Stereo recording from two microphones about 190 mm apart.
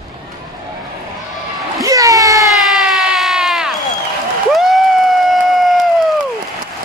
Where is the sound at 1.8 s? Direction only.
15° right (ahead or behind).